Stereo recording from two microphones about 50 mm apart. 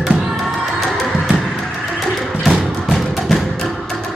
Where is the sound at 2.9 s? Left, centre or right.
Centre.